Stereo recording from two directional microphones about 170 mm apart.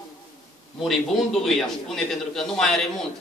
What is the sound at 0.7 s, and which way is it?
A man's voice, centre (ahead or behind).